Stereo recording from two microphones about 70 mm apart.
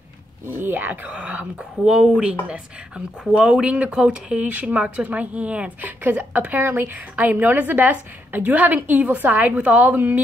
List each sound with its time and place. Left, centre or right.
0.6 s a woman's voice: right; by 4.4 s centre
4.4 s a woman's voice: right